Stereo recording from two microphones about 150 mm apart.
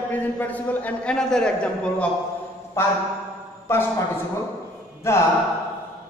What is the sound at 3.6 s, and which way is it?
A man's voice, 15° left (ahead or behind).